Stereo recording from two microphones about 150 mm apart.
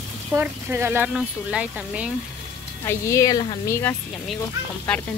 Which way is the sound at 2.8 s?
20° left (ahead or behind).